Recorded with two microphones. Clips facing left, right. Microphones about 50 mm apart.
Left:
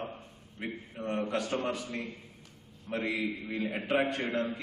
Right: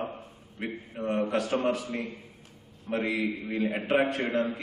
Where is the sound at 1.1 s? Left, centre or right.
Centre.